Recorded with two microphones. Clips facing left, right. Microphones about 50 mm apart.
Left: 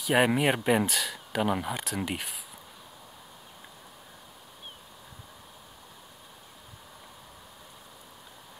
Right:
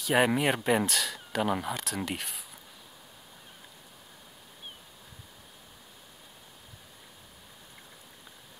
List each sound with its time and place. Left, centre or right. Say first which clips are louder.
0.0 s speech: left 1 dB; centre